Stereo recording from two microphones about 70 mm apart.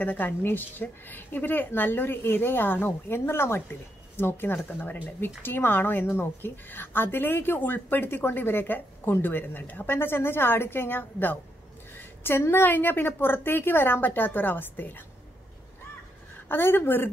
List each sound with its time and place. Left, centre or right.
0.0 s a woman's voice: left
16.4 s a woman's voice: left